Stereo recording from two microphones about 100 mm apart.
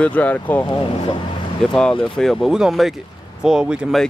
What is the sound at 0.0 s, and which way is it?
Speech, 15° left (ahead or behind).